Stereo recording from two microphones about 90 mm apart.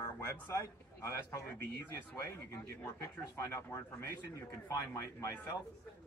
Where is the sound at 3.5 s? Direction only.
35° left (ahead or behind).